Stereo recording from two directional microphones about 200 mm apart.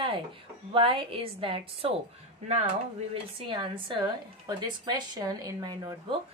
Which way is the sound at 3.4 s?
25° right (ahead or behind).